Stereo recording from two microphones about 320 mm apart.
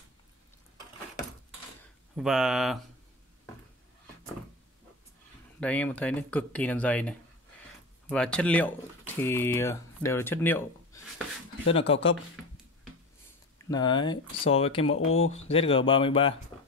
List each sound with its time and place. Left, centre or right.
2.1 s speech: centre
5.6 s speech: centre
11.7 s speech: centre
13.7 s speech: centre
15.0 s speech: left
15.4 s speech: centre